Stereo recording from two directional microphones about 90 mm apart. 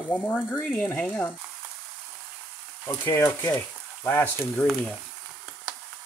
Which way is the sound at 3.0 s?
25° left (ahead or behind).